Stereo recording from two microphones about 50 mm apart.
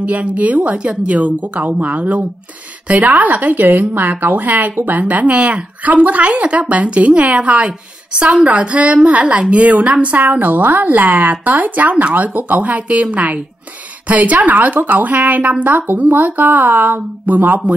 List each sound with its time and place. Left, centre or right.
0.0 s a woman's voice: right